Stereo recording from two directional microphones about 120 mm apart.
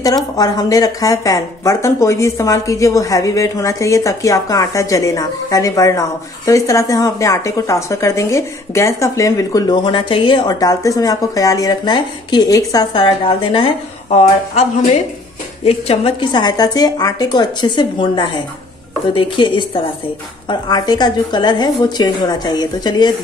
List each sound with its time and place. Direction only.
0.0 s speech: 30° left (ahead or behind)
9.8 s a woman's voice: 45° left (ahead or behind); by 12.8 s 30° left (ahead or behind)
12.9 s a woman's voice: 45° left (ahead or behind)
14.1 s speech: 65° left (ahead or behind)
15.6 s a woman's voice: 55° left (ahead or behind); by 23.1 s 35° left (ahead or behind)